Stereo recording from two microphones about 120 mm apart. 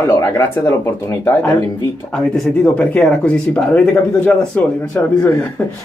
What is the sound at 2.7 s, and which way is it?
Speech, 10° left (ahead or behind).